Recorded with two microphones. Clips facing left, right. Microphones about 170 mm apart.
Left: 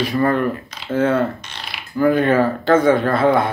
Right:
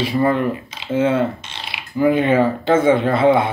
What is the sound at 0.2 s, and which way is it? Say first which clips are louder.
Speech: even; 20° right (ahead or behind).